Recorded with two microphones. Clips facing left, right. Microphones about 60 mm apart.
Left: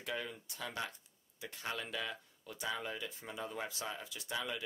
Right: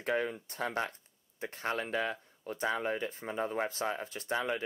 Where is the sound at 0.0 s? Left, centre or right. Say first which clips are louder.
Right 9 dB; right.